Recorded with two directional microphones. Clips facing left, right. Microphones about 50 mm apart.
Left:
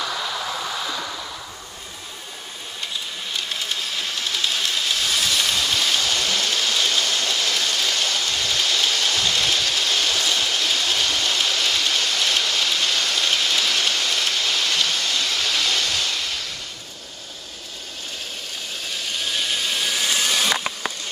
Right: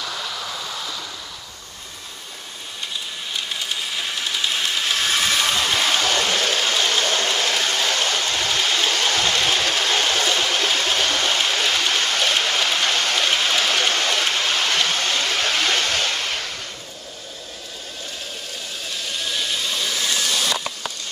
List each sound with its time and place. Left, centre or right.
3.3 s a sound: centre
3.8 s train: centre
4.9 s train: right
19.2 s vehicle: centre